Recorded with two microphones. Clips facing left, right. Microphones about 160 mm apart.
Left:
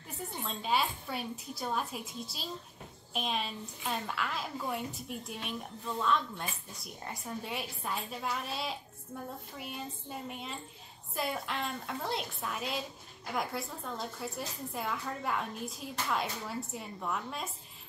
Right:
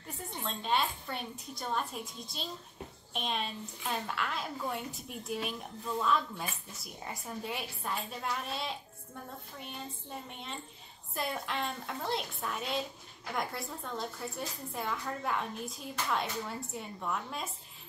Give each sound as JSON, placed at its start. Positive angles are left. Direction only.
{"t": 0.5, "sound": "a woman's voice", "side_deg": 5}